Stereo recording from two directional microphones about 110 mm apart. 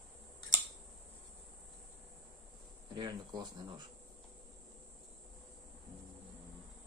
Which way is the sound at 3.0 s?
40° right (ahead or behind).